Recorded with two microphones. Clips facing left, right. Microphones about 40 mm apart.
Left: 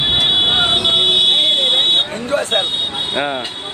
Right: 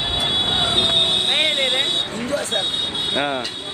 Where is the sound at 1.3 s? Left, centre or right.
Right.